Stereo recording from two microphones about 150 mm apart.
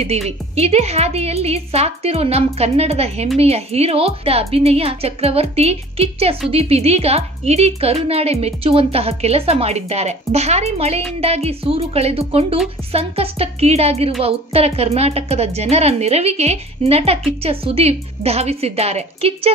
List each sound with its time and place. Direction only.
0.6 s a woman's voice: 45° right (ahead or behind)